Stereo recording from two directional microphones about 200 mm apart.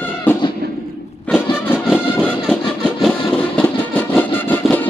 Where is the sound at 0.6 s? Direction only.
55° right (ahead or behind).